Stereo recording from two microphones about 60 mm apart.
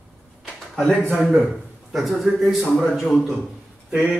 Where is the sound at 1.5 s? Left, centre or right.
Centre.